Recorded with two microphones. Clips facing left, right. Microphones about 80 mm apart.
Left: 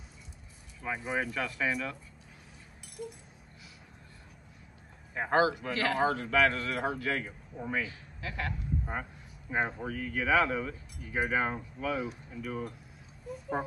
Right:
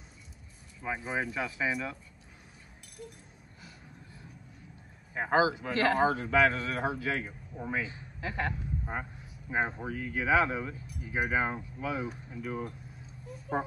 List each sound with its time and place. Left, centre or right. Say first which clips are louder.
1.0 s speech: left 1 dB; centre
5.1 s speech: even; centre
5.7 s speech: right 3 dB; right
5.9 s speech: left 1 dB; centre
7.8 s speech: right 2 dB; right
9.5 s speech: even; centre